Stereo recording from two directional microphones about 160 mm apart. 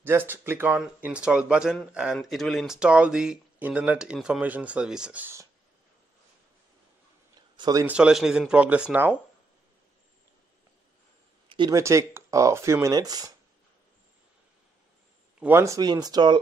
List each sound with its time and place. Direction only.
0.0 s speech: 15° right (ahead or behind)
7.3 s a sound: 25° right (ahead or behind)
7.8 s speech: 5° right (ahead or behind)
11.4 s a sound: 30° right (ahead or behind)
11.7 s speech: 20° right (ahead or behind)
15.3 s speech: 15° right (ahead or behind)